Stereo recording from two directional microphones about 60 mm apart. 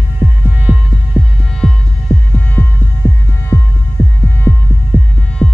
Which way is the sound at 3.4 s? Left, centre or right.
Left.